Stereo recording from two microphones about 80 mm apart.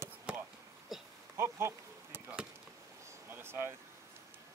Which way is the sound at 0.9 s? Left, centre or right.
Centre.